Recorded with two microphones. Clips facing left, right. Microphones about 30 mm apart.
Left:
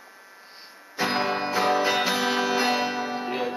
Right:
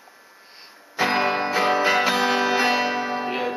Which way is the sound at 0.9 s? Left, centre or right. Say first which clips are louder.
Right 4 dB; centre.